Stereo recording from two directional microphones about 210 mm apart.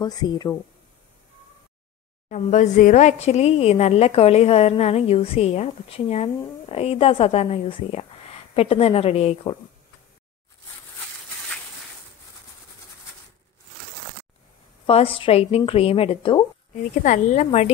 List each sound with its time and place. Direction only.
0.0 s a woman's voice: 20° left (ahead or behind)
2.2 s a woman's voice: 35° left (ahead or behind)
14.9 s a woman's voice: 25° left (ahead or behind)
17.0 s a woman's voice: 35° left (ahead or behind)